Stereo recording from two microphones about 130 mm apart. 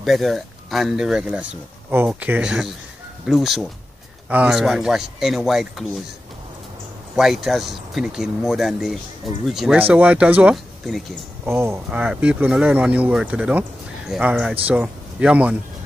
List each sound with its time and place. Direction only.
0.0 s speech: centre (ahead or behind)
7.2 s speech: centre (ahead or behind)
9.8 s speech: 15° right (ahead or behind)
11.4 s speech: 20° right (ahead or behind)
11.9 s speech: 10° right (ahead or behind)